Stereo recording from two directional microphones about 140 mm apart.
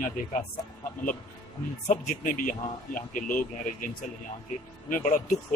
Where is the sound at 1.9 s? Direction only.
65° left (ahead or behind).